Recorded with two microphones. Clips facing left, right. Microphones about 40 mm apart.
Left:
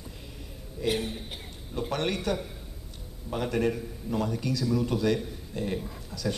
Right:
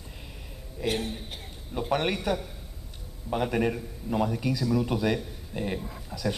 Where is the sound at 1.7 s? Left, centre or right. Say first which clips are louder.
Right 3 dB; centre.